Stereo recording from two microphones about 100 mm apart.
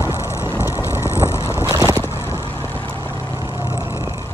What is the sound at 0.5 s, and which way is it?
Vehicle, 30° left (ahead or behind).